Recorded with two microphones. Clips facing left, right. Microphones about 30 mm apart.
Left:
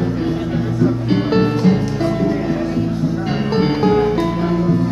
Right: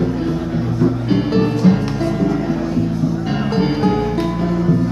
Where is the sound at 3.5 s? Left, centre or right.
Centre.